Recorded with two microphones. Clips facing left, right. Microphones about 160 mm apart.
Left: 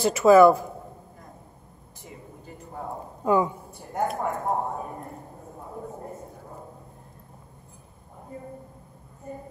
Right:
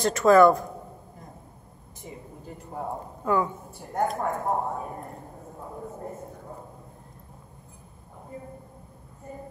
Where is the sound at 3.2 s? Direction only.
15° left (ahead or behind).